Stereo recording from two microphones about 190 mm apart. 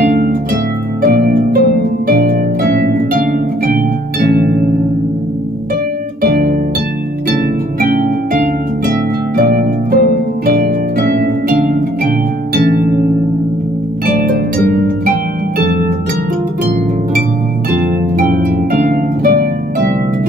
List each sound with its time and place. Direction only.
0.1 s harp: 45° right (ahead or behind)
6.2 s harp: 50° right (ahead or behind)
9.4 s harp: 50° right (ahead or behind)
12.5 s harp: 50° right (ahead or behind)
14.0 s harp: 50° right (ahead or behind)
18.1 s harp: 50° right (ahead or behind)